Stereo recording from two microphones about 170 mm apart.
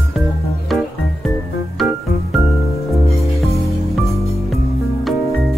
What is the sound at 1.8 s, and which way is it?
Organ, centre (ahead or behind).